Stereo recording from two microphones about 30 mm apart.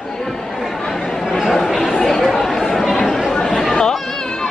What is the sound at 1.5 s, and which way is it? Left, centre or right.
Chatter, centre.